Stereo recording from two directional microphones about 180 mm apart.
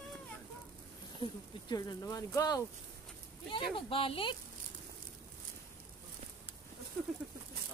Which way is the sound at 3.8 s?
30° left (ahead or behind).